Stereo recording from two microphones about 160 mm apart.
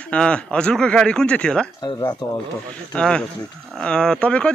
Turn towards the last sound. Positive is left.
turn(degrees=5)  # may be behind; listen again after turning